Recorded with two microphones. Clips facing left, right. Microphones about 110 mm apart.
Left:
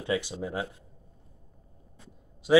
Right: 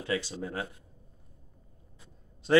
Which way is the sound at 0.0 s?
15° left (ahead or behind).